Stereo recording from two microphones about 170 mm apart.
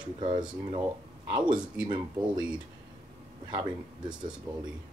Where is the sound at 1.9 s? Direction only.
25° right (ahead or behind).